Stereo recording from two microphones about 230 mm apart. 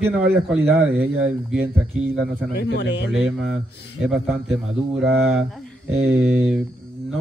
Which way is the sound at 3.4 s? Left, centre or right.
Centre.